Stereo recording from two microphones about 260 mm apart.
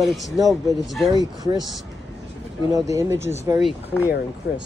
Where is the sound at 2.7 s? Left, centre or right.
Centre.